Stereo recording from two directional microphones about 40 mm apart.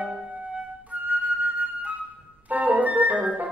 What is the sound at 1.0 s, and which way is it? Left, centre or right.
Music, right.